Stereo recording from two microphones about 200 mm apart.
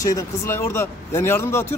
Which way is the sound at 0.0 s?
15° left (ahead or behind).